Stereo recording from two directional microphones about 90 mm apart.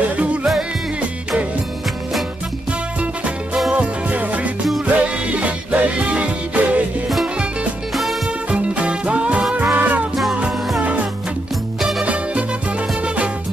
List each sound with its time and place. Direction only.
0.2 s music: 15° right (ahead or behind)
3.7 s music: 15° right (ahead or behind)
7.9 s music: centre (ahead or behind)
8.5 s music: 15° right (ahead or behind)